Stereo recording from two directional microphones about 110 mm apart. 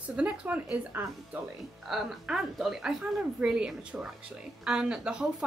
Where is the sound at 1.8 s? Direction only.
Centre (ahead or behind).